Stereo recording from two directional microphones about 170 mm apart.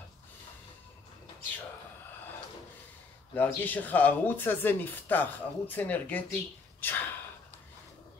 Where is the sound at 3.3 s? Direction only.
10° left (ahead or behind).